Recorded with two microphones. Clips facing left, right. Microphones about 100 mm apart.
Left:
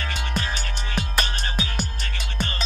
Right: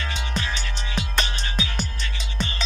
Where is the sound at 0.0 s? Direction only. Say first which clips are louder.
Left 1 dB; 50° left (ahead or behind).